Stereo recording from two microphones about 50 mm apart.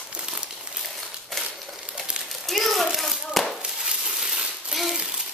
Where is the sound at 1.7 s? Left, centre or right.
Centre.